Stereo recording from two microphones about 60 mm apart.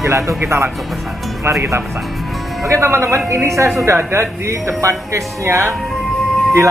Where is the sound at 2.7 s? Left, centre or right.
Right.